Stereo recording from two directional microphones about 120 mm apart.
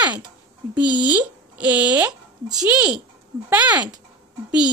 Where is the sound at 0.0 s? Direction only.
15° right (ahead or behind).